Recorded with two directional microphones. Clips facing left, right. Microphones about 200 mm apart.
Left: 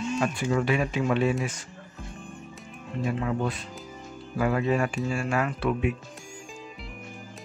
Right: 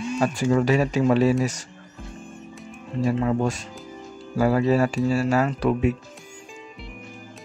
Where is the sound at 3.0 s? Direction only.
40° right (ahead or behind).